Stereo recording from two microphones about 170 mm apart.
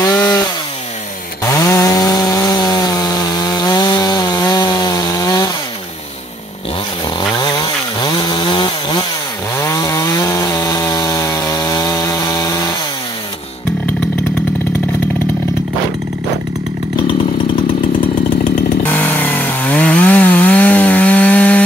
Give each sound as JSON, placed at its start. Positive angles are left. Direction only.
{"t": 0.1, "sound": "chainsaw", "side_deg": 10}
{"t": 1.6, "sound": "chainsaw", "side_deg": 20}
{"t": 7.2, "sound": "chainsaw", "side_deg": 25}
{"t": 18.8, "sound": "chainsaw", "side_deg": 15}